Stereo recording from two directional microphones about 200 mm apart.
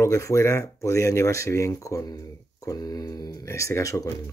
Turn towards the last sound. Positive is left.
turn(degrees=15)  # may be behind; listen again after turning